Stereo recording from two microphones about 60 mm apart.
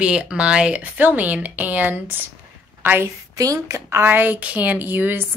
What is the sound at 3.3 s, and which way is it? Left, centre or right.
Speech, right.